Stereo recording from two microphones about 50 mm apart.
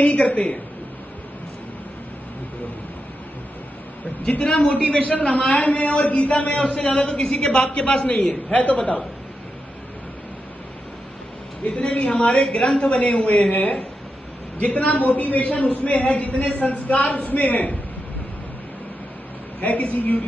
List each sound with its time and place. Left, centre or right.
0.0 s a man's voice: left
4.2 s a man's voice: left
5.0 s a man's voice: left
11.6 s a man's voice: left
12.4 s a man's voice: centre; by 17.7 s left
19.6 s a man's voice: left